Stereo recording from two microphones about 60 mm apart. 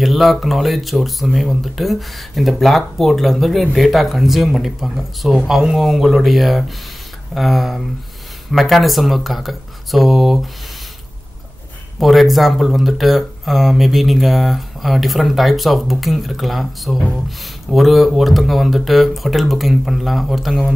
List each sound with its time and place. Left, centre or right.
0.0 s speech: centre
12.0 s speech: centre